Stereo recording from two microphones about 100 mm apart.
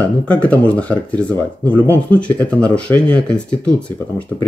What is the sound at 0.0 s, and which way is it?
Speech, 15° left (ahead or behind).